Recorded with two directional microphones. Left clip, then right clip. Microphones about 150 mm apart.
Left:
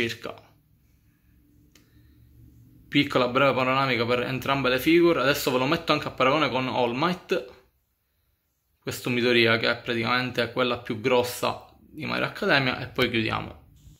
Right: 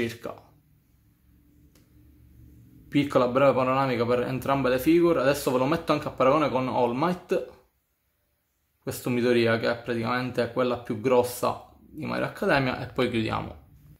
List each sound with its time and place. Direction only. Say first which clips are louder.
0.0 s speech: left 2 dB; centre (ahead or behind)
2.9 s speech: even; centre (ahead or behind)
8.8 s speech: left 1 dB; centre (ahead or behind)